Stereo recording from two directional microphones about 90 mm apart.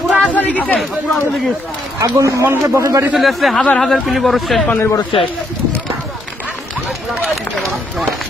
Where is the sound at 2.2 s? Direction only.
30° right (ahead or behind).